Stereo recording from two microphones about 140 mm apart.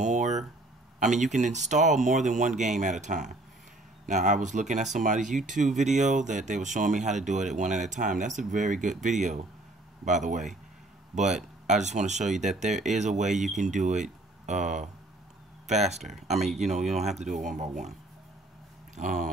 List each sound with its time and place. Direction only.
0.0 s a sound: 55° right (ahead or behind)
0.9 s speech: 60° right (ahead or behind)
11.1 s speech: centre (ahead or behind)
11.6 s speech: 55° right (ahead or behind)
16.0 s speech: centre (ahead or behind)
16.6 s speech: 55° right (ahead or behind)
18.9 s speech: 60° right (ahead or behind)